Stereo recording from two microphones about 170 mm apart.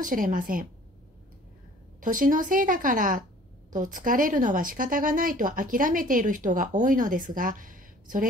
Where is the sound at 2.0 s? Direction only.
50° right (ahead or behind).